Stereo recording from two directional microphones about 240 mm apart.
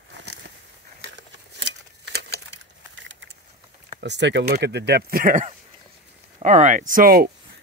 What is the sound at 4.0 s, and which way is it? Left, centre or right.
Speech, right.